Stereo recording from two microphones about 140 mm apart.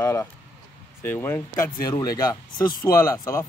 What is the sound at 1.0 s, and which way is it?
Speech, 15° left (ahead or behind).